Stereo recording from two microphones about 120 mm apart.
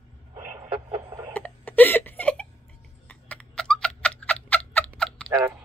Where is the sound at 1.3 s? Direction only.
15° left (ahead or behind).